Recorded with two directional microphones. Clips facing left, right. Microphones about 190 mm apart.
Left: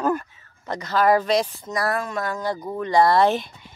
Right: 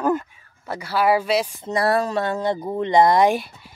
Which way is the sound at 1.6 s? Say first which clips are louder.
Right 5 dB; 30° right (ahead or behind).